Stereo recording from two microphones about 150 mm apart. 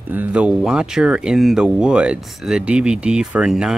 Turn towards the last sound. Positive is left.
turn(degrees=-5)  # may be behind; listen again after turning